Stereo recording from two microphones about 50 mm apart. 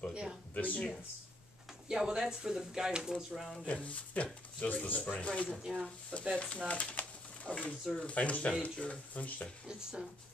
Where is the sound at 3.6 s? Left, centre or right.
Left.